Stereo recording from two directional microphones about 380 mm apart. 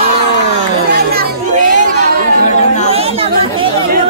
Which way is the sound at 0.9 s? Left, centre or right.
Right.